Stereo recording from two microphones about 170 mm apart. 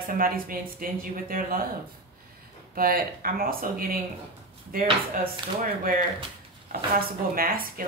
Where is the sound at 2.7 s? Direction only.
60° right (ahead or behind).